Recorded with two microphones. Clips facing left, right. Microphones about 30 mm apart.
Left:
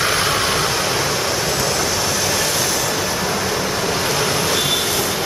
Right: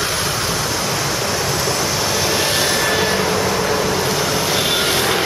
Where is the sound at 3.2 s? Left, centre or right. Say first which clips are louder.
Right 3 dB; centre.